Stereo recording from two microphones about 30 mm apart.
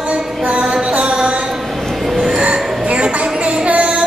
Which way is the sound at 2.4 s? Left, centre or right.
Right.